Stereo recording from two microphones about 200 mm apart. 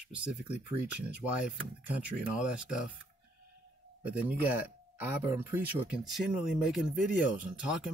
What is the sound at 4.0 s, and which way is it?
Speech, 10° right (ahead or behind).